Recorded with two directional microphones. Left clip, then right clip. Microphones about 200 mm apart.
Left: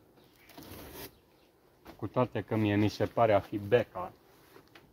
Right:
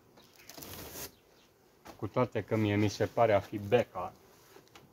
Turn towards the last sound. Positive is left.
turn(degrees=35)  # may be behind; listen again after turning